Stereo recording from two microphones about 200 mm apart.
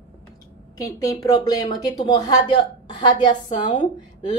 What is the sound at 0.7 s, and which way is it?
Speech, 15° left (ahead or behind).